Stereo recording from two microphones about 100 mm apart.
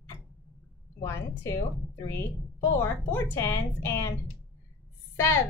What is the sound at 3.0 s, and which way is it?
A woman's voice, 25° left (ahead or behind).